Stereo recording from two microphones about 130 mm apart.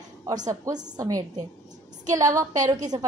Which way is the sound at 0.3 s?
30° right (ahead or behind).